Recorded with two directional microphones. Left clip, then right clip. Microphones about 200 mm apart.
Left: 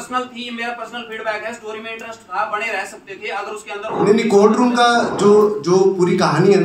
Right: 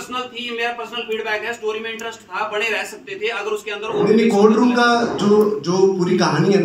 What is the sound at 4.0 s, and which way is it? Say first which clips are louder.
A man's voice: left 2 dB; 40° left (ahead or behind).